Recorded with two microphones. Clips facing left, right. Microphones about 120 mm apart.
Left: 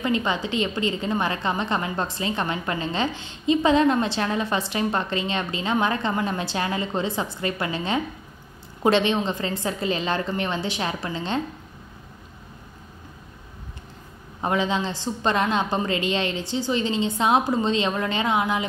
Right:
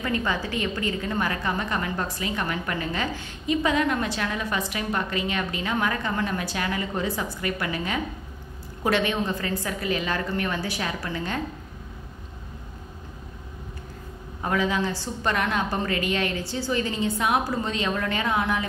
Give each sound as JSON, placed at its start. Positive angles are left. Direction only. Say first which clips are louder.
{"t": 0.0, "sound": "a woman's voice", "louder": "left 3 dB", "side_deg": 20}
{"t": 14.4, "sound": "a woman's voice", "louder": "left 1 dB", "side_deg": 25}